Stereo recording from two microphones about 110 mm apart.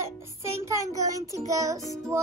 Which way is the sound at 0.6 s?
25° right (ahead or behind).